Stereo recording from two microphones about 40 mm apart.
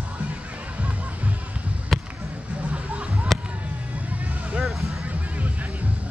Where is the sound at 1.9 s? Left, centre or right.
Centre.